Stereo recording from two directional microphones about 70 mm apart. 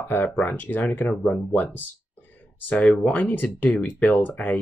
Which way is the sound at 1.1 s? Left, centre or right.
Centre.